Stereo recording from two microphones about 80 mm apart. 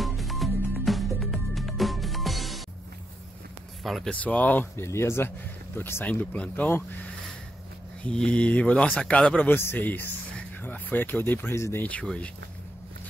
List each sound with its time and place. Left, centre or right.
0.0 s music: centre
3.8 s speech: centre
4.1 s speech: centre
6.0 s speech: centre
9.5 s speech: left